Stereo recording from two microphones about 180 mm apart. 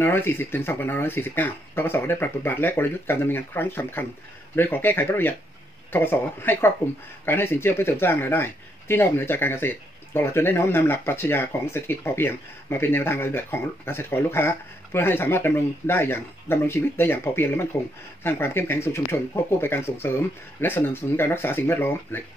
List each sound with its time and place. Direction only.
0.0 s speech: 10° left (ahead or behind)